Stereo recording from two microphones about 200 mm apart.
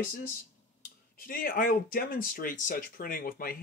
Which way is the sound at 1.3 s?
45° left (ahead or behind).